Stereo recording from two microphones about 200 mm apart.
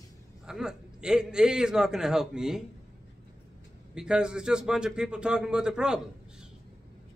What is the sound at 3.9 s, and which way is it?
A man's voice, 5° right (ahead or behind).